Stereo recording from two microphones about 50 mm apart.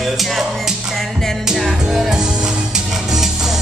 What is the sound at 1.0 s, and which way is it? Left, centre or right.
Speech, centre.